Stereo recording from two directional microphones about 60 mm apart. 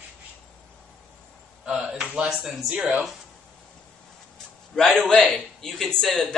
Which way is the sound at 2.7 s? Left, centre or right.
Centre.